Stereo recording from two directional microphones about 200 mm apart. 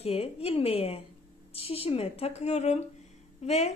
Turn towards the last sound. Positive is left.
turn(degrees=35)  # may be behind; listen again after turning